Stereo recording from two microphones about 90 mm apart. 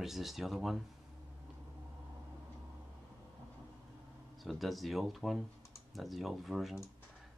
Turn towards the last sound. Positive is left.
turn(degrees=0)  # may be behind; listen again after turning